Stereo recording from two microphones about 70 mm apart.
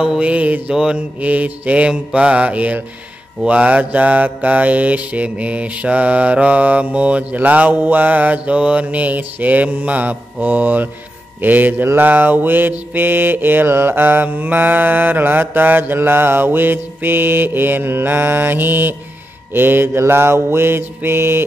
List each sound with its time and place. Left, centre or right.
0.0 s mantra: centre
0.3 s mantra: centre; by 21.5 s right